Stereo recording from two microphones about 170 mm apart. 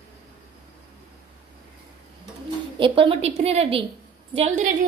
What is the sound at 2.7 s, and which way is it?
A child's voice, 30° right (ahead or behind).